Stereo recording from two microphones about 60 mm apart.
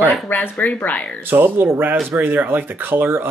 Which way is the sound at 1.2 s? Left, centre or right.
Right.